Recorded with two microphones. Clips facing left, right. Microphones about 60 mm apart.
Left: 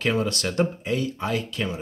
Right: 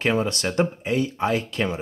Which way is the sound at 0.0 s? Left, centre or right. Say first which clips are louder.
Right 2 dB; right.